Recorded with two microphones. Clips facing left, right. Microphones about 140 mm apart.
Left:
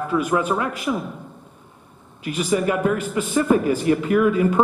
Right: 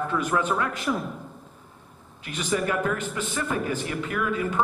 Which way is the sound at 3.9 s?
30° left (ahead or behind).